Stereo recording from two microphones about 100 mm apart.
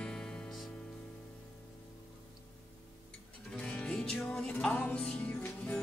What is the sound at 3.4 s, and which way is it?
Music, 15° left (ahead or behind).